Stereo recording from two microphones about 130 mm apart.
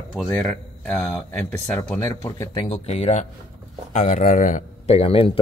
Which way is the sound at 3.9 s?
85° left.